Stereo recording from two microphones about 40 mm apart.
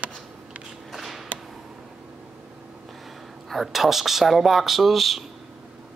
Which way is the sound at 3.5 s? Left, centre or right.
Centre.